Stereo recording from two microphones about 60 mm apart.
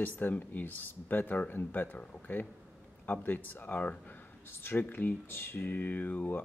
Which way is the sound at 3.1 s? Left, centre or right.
Left.